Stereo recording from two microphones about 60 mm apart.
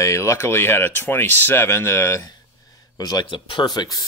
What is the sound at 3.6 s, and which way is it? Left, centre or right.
Speech, left.